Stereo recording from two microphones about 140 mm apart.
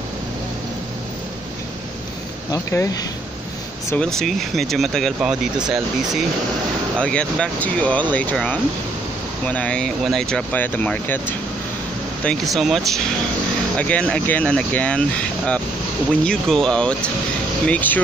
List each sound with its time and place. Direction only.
2.5 s speech: 20° left (ahead or behind)
3.9 s speech: 5° left (ahead or behind)
7.0 s speech: 5° left (ahead or behind)
12.3 s speech: centre (ahead or behind)